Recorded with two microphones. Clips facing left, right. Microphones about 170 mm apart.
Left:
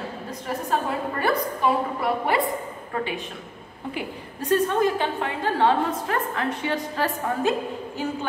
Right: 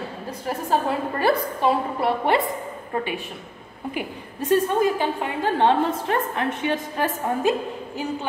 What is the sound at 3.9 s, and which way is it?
A woman's voice, 15° right (ahead or behind).